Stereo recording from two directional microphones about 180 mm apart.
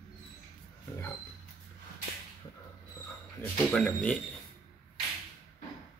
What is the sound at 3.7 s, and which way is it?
Speech, 5° left (ahead or behind).